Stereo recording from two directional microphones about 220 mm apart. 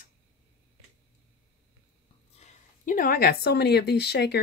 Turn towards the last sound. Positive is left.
turn(degrees=50)  # may be behind; listen again after turning